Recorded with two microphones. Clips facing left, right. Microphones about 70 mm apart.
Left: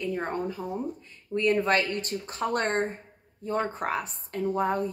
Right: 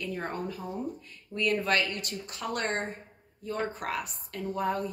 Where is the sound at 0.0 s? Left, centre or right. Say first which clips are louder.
Left 4 dB; left.